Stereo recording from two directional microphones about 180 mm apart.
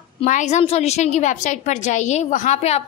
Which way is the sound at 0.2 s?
40° left (ahead or behind).